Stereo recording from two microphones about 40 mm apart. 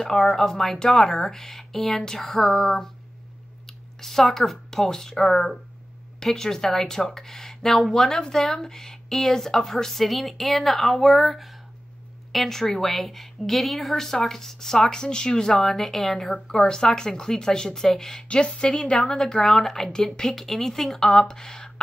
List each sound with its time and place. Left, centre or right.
0.0 s speech: centre
6.2 s speech: centre
15.5 s a woman's voice: centre
16.4 s speech: centre
18.1 s a woman's voice: left